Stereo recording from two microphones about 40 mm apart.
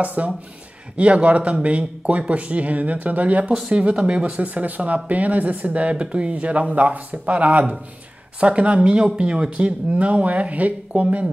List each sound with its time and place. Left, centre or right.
0.0 s speech: right